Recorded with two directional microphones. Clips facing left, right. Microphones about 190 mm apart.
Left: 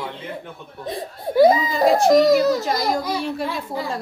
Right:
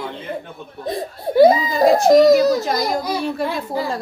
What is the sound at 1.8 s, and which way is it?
A woman's voice, 40° right (ahead or behind).